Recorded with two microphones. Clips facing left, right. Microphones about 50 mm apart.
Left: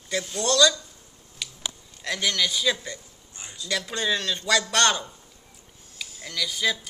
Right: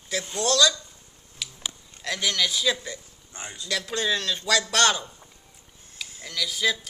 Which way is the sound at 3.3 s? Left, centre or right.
Right.